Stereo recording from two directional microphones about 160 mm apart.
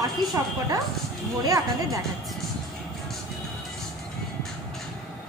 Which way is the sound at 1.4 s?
20° right (ahead or behind).